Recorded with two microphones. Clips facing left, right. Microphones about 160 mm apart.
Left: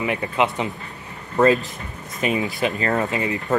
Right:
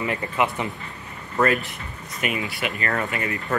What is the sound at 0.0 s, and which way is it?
A man's voice, 15° left (ahead or behind).